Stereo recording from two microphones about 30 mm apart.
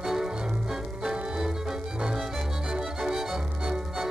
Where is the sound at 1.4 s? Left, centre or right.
Centre.